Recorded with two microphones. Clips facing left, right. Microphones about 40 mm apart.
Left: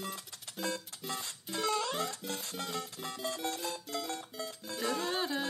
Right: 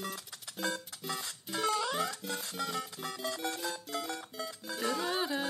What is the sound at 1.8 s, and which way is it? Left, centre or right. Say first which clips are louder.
Music: right 2 dB; centre.